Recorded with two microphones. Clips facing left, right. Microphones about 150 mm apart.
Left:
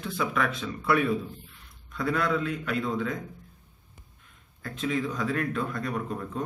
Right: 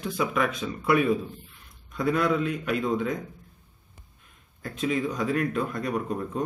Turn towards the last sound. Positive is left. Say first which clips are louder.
# right 3 dB
turn(degrees=-15)  # may be behind; listen again after turning